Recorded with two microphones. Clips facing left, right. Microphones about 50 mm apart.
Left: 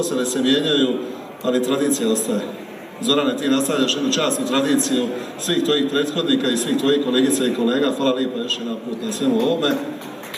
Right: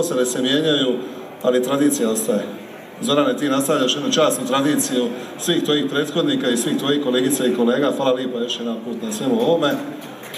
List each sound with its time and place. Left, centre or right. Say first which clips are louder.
0.1 s a man's voice: even; right